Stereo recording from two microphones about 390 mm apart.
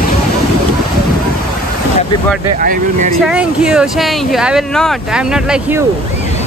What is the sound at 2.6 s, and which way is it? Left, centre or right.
Speech, right.